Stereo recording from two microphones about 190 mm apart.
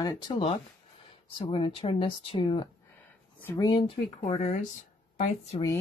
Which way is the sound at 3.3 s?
15° left (ahead or behind).